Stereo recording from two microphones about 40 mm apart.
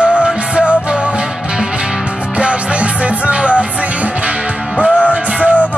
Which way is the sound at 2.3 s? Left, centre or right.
Right.